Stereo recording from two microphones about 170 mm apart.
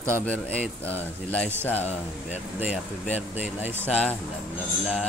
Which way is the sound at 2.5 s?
5° right (ahead or behind).